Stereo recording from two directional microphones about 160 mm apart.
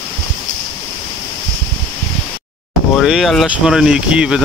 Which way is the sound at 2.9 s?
Centre (ahead or behind).